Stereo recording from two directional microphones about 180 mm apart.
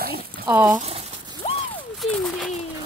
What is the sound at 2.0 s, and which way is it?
Speech, centre (ahead or behind).